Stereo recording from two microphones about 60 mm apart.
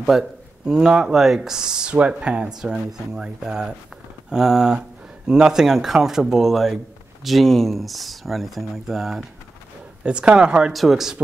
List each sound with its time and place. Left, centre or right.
0.0 s speech: centre
10.0 s speech: centre
10.7 s speech: centre